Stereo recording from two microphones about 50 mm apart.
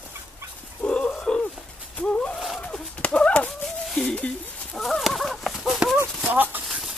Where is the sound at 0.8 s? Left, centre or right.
Centre.